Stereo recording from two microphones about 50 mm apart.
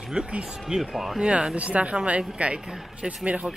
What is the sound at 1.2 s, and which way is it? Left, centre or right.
Speech, right.